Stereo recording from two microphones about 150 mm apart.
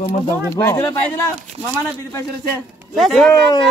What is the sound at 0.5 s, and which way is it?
Speech, 15° left (ahead or behind).